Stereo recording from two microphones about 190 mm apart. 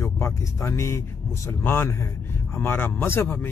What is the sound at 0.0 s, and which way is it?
A man's voice, 15° left (ahead or behind).